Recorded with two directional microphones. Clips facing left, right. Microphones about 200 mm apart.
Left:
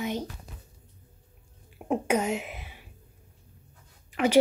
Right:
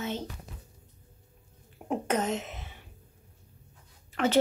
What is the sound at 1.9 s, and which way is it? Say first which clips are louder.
Speech: left 3 dB; 10° left (ahead or behind).